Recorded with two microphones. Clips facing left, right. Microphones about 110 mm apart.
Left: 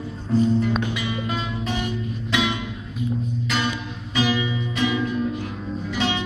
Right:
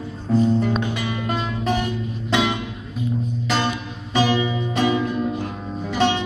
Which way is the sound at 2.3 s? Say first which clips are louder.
Right 3 dB; 35° right (ahead or behind).